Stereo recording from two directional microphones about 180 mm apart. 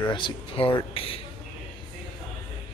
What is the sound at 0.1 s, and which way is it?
Speech, 30° left (ahead or behind).